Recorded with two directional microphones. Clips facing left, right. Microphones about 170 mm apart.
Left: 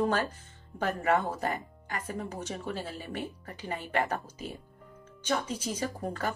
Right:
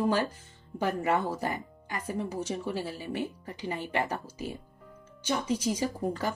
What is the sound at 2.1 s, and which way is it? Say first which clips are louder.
A woman's voice: right 6 dB; 10° right (ahead or behind).